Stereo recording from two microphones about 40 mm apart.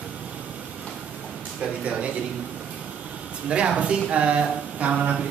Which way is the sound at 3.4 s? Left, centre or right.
Right.